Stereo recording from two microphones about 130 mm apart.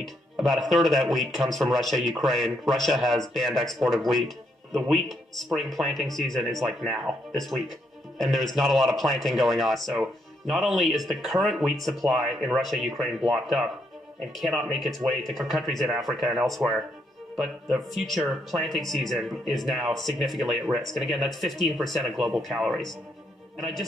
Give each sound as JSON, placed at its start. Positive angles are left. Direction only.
{"t": 0.0, "sound": "speech", "side_deg": 0}